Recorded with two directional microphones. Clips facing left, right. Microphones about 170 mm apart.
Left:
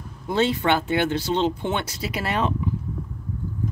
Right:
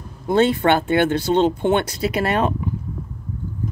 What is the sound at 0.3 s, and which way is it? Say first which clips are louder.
Speech: right 5 dB; 55° right (ahead or behind).